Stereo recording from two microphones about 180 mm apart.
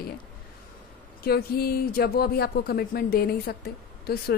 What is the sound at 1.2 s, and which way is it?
Speech, 60° left (ahead or behind).